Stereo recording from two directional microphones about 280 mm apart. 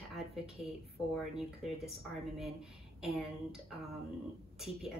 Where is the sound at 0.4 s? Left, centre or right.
Centre.